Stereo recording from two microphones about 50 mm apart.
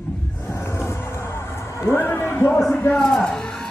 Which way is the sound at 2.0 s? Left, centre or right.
Left.